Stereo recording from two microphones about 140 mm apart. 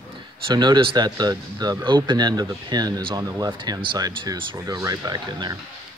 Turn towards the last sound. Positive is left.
turn(degrees=-30)  # may be behind; listen again after turning